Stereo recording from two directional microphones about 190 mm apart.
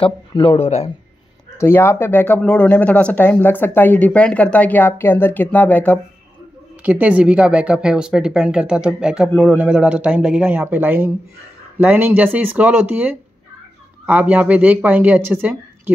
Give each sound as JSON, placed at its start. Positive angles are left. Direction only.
{"t": 0.0, "sound": "speech", "side_deg": 25}
{"t": 1.6, "sound": "speech", "side_deg": 10}
{"t": 6.8, "sound": "speech", "side_deg": -5}